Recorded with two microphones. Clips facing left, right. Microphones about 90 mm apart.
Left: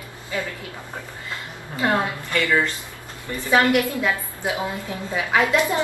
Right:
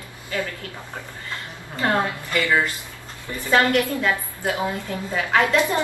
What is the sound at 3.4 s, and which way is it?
A woman's voice, 10° left (ahead or behind).